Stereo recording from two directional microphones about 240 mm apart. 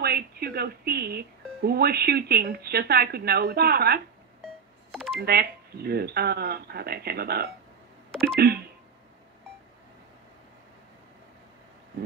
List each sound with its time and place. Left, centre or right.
0.0 s speech: right
4.9 s a sound: centre
5.2 s speech: right
8.1 s telephone dialing: centre